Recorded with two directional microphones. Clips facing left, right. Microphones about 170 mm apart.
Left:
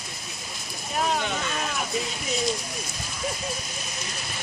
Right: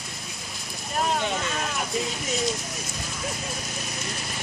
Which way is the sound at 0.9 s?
Centre (ahead or behind).